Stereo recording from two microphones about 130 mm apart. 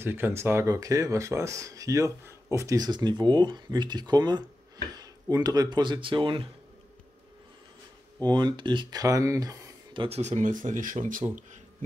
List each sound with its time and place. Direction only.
0.0 s speech: 15° right (ahead or behind); by 6.5 s 40° right (ahead or behind)
8.2 s speech: 35° right (ahead or behind)
9.9 s speech: 50° right (ahead or behind); by 11.2 s 90° right